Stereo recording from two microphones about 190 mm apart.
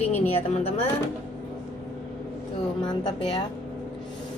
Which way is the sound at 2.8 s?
25° left (ahead or behind).